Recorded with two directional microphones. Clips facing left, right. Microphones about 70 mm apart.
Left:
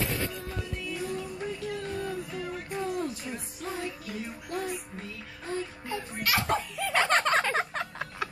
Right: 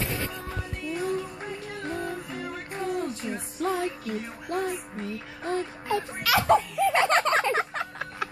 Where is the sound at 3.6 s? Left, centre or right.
Right.